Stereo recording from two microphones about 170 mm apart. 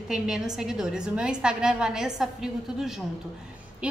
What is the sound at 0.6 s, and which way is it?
A woman's voice, 5° right (ahead or behind).